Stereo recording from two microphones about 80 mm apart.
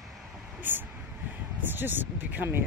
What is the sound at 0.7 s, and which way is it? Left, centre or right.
Speech, right.